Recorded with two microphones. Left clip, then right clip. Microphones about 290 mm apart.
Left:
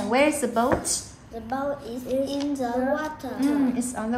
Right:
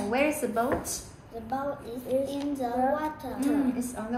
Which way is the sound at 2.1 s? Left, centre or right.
Centre.